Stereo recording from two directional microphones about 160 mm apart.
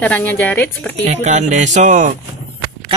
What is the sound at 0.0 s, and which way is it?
Speech, 10° left (ahead or behind).